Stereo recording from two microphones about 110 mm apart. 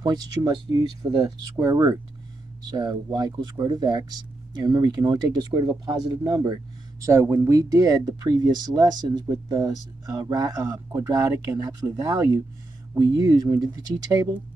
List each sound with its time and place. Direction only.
0.0 s speech: 40° right (ahead or behind)